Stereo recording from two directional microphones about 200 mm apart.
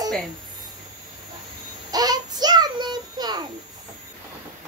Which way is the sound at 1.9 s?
20° right (ahead or behind).